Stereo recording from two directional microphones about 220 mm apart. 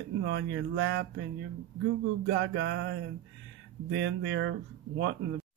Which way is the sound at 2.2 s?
55° right (ahead or behind).